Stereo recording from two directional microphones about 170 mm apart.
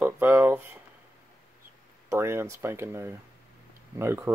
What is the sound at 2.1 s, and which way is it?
Speech, 15° right (ahead or behind).